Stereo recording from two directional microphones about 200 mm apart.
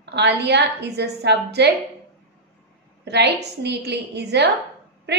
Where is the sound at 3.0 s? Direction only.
55° right (ahead or behind).